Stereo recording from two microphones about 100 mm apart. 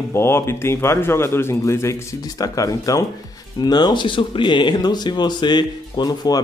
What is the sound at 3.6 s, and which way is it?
Speech, 45° left (ahead or behind).